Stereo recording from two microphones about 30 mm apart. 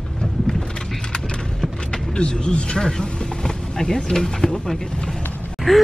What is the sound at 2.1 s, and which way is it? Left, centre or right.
Speech, left.